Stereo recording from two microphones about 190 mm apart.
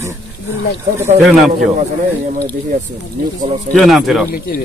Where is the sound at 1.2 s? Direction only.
Centre (ahead or behind).